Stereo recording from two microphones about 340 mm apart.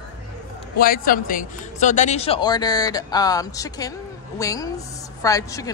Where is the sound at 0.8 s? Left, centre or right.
Left.